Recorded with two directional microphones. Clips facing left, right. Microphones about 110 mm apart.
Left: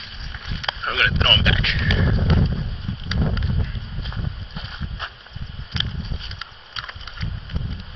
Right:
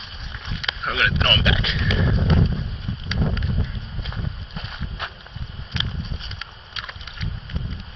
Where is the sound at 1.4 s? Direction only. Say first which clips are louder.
Even; 15° right (ahead or behind).